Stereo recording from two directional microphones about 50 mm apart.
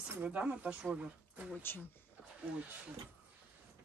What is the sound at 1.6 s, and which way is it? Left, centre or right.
Speech, left.